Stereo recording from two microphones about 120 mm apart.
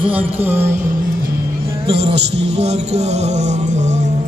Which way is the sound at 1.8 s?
60° right (ahead or behind).